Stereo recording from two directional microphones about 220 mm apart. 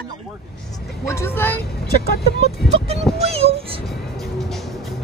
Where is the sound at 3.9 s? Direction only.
Centre (ahead or behind).